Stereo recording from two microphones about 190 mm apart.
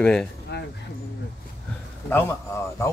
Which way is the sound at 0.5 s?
60° left (ahead or behind).